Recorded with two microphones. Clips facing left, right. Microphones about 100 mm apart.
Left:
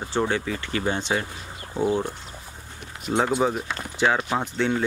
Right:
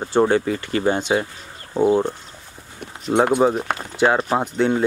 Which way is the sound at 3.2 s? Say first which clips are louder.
Right 6 dB; 55° right (ahead or behind).